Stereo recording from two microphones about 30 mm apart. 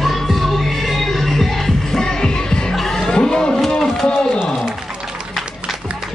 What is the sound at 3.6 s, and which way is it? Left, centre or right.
Music, centre.